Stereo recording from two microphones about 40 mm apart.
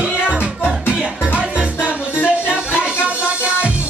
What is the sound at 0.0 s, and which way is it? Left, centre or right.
Music, right.